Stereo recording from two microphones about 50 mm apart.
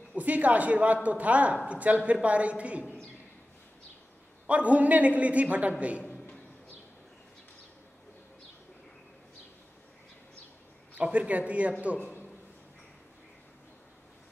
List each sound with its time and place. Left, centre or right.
0.1 s a man's voice: right
4.5 s a man's voice: right
11.0 s a man's voice: right